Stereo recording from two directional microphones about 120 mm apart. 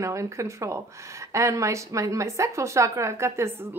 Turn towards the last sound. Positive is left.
turn(degrees=-20)  # may be behind; listen again after turning